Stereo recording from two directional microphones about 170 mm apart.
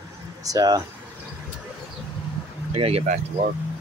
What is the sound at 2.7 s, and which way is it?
Speech, 35° right (ahead or behind).